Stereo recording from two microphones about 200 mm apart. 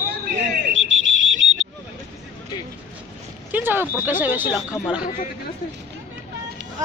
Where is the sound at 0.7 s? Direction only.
70° right (ahead or behind).